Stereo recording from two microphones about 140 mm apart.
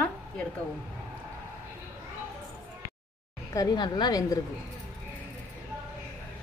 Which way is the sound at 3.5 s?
30° left (ahead or behind).